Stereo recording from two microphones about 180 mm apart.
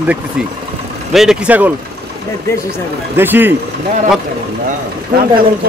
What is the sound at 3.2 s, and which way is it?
Speech, 10° right (ahead or behind).